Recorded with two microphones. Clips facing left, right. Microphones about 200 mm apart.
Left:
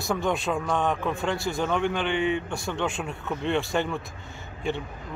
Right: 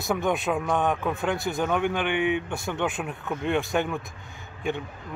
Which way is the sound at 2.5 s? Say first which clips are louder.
Even; 20° right (ahead or behind).